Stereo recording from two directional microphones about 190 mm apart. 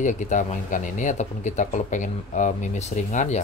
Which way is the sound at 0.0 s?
40° left (ahead or behind).